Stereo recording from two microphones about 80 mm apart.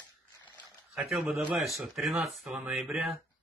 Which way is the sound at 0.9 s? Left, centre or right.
Centre.